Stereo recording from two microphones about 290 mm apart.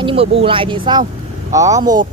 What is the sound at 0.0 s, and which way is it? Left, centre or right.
Speech, centre.